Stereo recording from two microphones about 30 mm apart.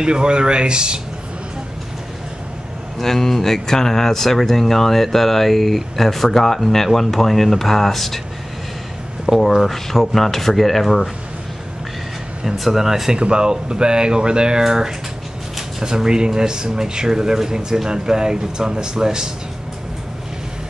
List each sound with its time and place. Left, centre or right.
0.0 s speech: right
3.0 s speech: centre
9.6 s speech: centre
12.4 s speech: centre
13.2 s speech: right
14.7 s speech: centre